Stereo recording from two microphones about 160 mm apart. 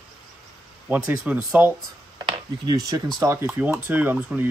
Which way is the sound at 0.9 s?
10° right (ahead or behind).